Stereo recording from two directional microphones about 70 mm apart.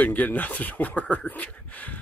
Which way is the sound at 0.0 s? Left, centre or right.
Left.